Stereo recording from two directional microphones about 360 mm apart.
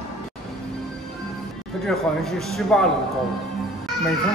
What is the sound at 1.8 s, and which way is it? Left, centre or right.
A man's voice, centre.